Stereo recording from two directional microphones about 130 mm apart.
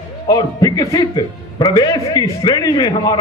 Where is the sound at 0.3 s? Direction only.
30° left (ahead or behind).